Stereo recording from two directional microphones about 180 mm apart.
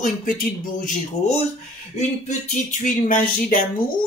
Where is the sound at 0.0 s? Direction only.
50° left (ahead or behind).